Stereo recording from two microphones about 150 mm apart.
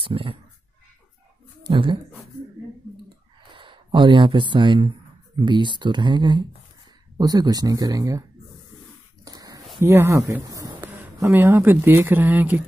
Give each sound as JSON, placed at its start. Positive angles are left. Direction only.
{"t": 0.0, "sound": "speech", "side_deg": -35}
{"t": 1.6, "sound": "speech", "side_deg": -35}
{"t": 3.5, "sound": "speech", "side_deg": -35}
{"t": 9.2, "sound": "a sound", "side_deg": -25}
{"t": 9.8, "sound": "speech", "side_deg": -20}